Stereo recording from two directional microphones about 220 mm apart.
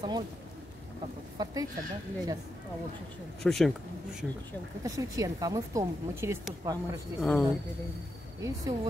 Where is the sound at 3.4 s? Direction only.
Centre (ahead or behind).